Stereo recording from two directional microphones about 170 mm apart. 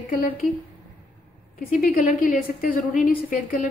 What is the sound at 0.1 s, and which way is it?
Speech, 55° left (ahead or behind).